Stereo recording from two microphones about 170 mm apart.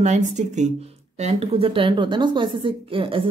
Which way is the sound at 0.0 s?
45° right (ahead or behind).